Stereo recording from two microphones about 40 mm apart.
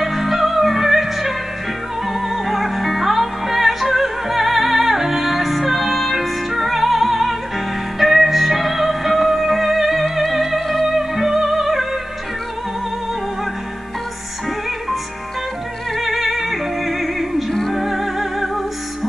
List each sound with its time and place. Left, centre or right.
0.0 s music: centre
16.0 s music: centre